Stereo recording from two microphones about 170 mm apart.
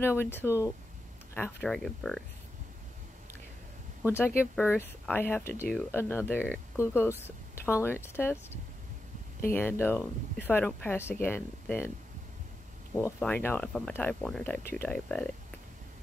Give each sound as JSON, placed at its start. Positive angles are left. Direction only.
{"t": 0.0, "sound": "speech", "side_deg": 15}
{"t": 4.0, "sound": "speech", "side_deg": 15}
{"t": 9.5, "sound": "speech", "side_deg": 10}
{"t": 12.9, "sound": "speech", "side_deg": 10}